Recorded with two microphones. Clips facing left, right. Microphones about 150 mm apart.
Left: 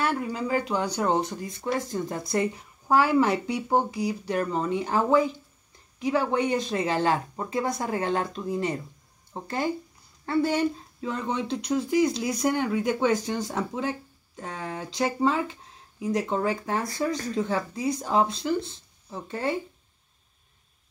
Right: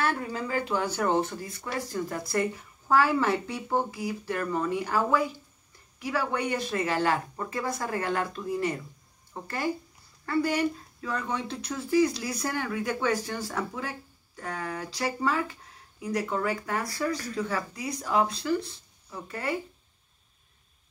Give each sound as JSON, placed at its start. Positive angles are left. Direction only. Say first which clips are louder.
{"t": 0.0, "sound": "speech", "louder": "left 2 dB", "side_deg": 15}